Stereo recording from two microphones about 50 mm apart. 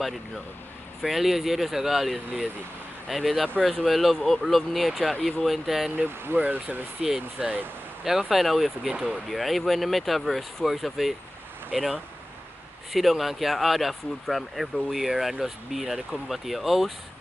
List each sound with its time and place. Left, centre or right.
1.0 s speech: centre
6.3 s speech: right
7.2 s speech: right
8.0 s speech: centre
8.8 s speech: centre
9.3 s speech: centre